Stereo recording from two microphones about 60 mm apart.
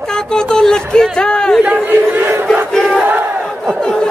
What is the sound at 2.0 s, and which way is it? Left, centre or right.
Crowd, right.